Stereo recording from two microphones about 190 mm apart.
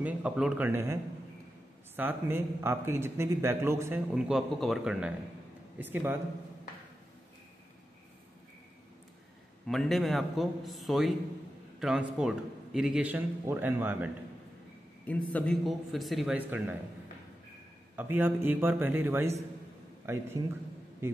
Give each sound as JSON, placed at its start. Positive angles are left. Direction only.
{"t": 0.0, "sound": "a man's voice", "side_deg": -5}
{"t": 2.0, "sound": "a man's voice", "side_deg": -10}
{"t": 9.7, "sound": "a man's voice", "side_deg": 0}
{"t": 15.0, "sound": "speech", "side_deg": 10}
{"t": 17.9, "sound": "a man's voice", "side_deg": -10}